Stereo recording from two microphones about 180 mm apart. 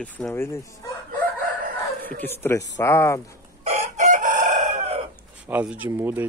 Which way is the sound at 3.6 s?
40° right (ahead or behind).